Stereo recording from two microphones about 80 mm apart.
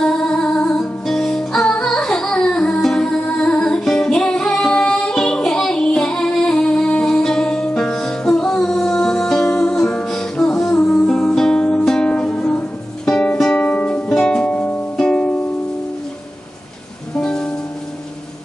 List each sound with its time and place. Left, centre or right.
0.0 s music: centre
17.1 s music: centre